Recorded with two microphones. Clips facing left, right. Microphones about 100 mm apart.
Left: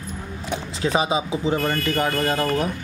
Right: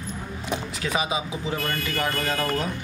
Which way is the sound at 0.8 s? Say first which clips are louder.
Left 7 dB; 30° left (ahead or behind).